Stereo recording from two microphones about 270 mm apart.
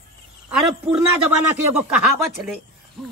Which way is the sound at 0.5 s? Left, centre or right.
Centre.